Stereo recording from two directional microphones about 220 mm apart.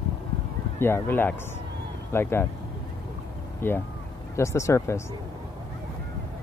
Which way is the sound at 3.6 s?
10° left (ahead or behind).